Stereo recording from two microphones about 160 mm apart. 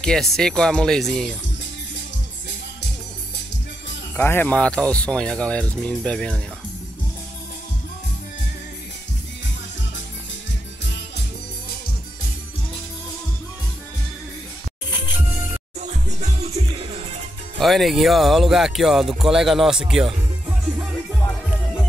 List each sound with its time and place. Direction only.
0.0 s speech: centre (ahead or behind)
4.2 s speech: 15° left (ahead or behind)
15.8 s music: 45° right (ahead or behind)
17.6 s speech: centre (ahead or behind)
20.4 s music: 10° right (ahead or behind)